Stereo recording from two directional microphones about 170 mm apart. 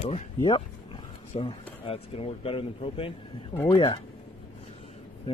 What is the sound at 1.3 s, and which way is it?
Speech, 30° left (ahead or behind).